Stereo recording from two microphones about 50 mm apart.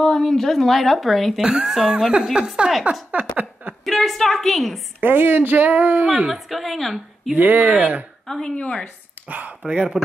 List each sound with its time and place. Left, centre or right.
0.0 s a woman's voice: centre
1.4 s speech: centre
3.8 s a woman's voice: centre
5.0 s speech: right
6.0 s speech: centre
6.3 s a woman's voice: centre
7.3 s speech: right
8.3 s speech: centre
8.5 s speech: left
9.3 s speech: right